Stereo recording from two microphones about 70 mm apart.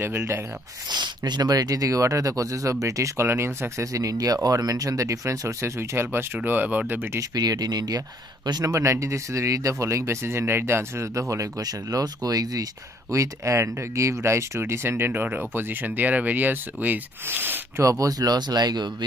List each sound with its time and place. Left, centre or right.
0.8 s speech: right
7.2 s speech: right
8.6 s speech: right
11.6 s speech: right
13.1 s speech: right
17.8 s speech: right